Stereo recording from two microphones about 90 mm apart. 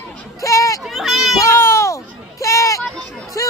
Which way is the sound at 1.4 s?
30° left (ahead or behind).